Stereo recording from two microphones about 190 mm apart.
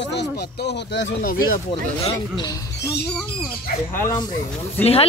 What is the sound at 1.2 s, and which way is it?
Speech, 45° left (ahead or behind).